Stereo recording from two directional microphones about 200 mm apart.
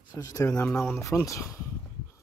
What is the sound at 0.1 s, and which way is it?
Speech, 20° left (ahead or behind).